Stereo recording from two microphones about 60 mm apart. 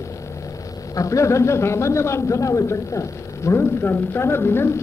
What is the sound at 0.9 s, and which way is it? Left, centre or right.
A man's voice, left.